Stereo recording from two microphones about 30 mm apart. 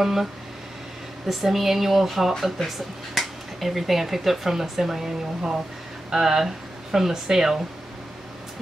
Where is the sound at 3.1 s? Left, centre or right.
Centre.